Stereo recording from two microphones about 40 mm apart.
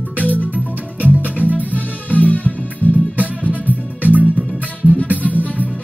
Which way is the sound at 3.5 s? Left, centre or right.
Right.